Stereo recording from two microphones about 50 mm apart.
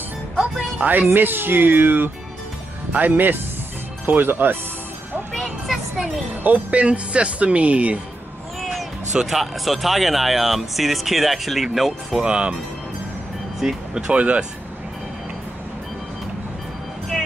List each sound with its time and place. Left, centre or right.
0.7 s speech: right
5.3 s music: centre
6.4 s speech: right
9.3 s speech: centre
12.3 s speech: centre
13.6 s speech: centre
14.0 s speech: right
17.1 s music: centre